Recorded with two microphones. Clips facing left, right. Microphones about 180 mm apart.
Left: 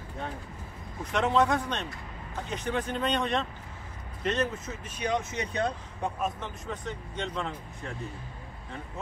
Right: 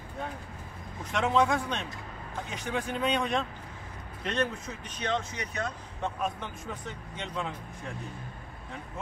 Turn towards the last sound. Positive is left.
turn(degrees=-5)  # may be behind; listen again after turning